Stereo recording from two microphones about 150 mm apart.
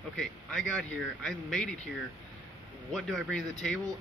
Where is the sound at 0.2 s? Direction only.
5° left (ahead or behind).